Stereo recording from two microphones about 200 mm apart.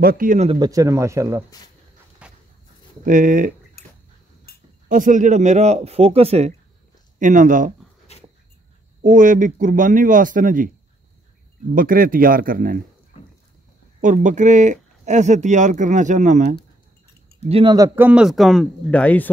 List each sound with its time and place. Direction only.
0.0 s speech: 45° right (ahead or behind)
0.5 s speech: 20° right (ahead or behind)
2.2 s a sound: 5° right (ahead or behind)
3.1 s speech: 40° right (ahead or behind)
4.8 s speech: 40° right (ahead or behind)
8.1 s dog: 30° left (ahead or behind)
9.0 s speech: 40° right (ahead or behind)
11.7 s speech: 45° right (ahead or behind)
14.0 s speech: 40° right (ahead or behind)
17.5 s speech: 25° right (ahead or behind); by 19.3 s 10° left (ahead or behind)